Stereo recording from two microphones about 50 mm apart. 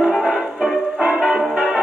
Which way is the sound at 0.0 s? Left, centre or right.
Centre.